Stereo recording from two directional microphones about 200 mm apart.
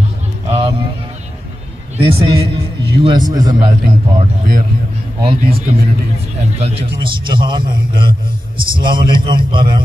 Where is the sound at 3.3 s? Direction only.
20° right (ahead or behind).